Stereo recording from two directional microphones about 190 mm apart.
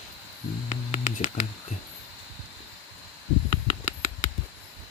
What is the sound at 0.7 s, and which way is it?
Music, 40° left (ahead or behind).